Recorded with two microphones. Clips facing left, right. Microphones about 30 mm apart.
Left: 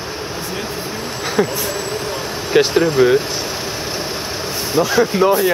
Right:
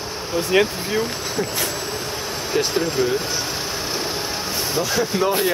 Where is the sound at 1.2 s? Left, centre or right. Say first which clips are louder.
Left 7 dB; left.